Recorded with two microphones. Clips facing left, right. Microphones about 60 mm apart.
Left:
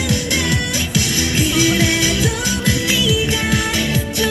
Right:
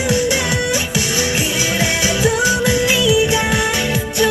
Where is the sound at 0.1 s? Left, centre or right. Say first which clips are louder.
Right 3 dB; centre.